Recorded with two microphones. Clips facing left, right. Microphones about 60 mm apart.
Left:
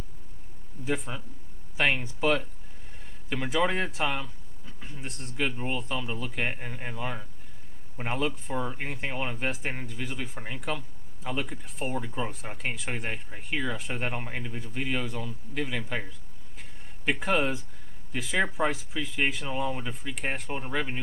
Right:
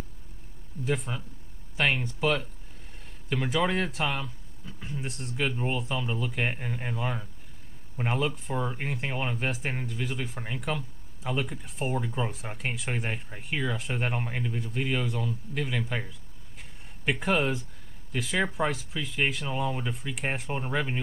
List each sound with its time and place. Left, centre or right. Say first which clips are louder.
0.8 s speech: right 1 dB; centre